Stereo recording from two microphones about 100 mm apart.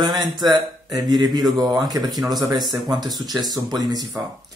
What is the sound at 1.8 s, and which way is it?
Speech, 40° right (ahead or behind).